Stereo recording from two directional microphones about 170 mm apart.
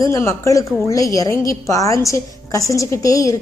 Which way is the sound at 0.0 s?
15° left (ahead or behind).